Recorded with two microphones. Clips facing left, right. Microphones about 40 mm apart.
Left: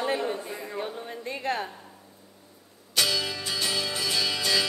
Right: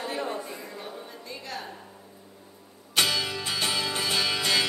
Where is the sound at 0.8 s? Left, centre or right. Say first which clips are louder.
Left 6 dB; left.